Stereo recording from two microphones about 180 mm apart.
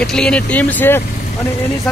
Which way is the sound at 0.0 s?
5° left (ahead or behind).